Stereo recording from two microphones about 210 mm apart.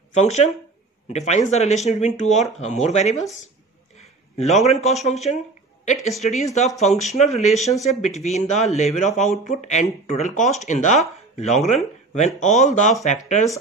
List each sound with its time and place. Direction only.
0.1 s speech: 35° left (ahead or behind)
4.4 s speech: 30° left (ahead or behind)
6.8 s speech: 35° left (ahead or behind)